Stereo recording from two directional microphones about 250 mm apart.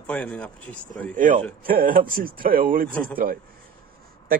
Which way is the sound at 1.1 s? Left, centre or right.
Right.